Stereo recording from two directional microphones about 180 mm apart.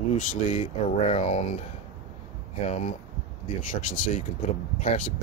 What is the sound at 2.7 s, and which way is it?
Speech, 40° left (ahead or behind).